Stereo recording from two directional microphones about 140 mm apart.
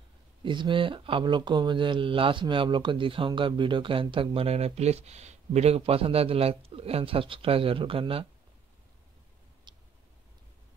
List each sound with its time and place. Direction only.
0.4 s speech: 35° right (ahead or behind)
9.7 s tick: 30° right (ahead or behind)